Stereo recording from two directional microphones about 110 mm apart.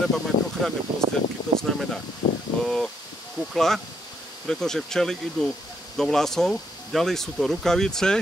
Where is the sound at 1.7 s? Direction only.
5° left (ahead or behind).